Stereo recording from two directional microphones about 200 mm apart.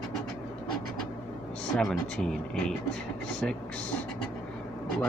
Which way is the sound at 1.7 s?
Centre (ahead or behind).